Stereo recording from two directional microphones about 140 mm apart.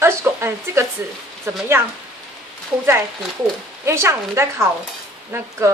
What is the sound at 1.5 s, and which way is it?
Dishes, 20° right (ahead or behind).